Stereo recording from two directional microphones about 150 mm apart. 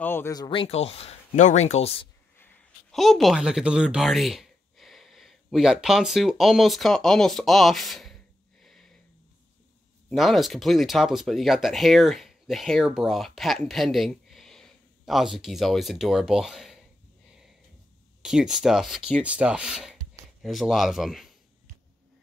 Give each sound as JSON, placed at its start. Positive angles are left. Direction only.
{"t": 0.0, "sound": "speech", "side_deg": 15}
{"t": 0.4, "sound": "speech", "side_deg": 35}
{"t": 2.3, "sound": "a sound", "side_deg": 15}
{"t": 2.9, "sound": "speech", "side_deg": 0}
{"t": 8.6, "sound": "sniff", "side_deg": 0}
{"t": 10.0, "sound": "speech", "side_deg": 0}
{"t": 18.2, "sound": "speech", "side_deg": -5}